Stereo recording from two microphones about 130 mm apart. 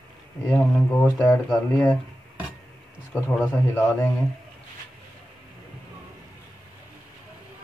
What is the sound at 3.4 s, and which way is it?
Speech, 10° left (ahead or behind).